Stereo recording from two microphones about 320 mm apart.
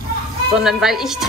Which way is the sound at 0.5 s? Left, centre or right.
Centre.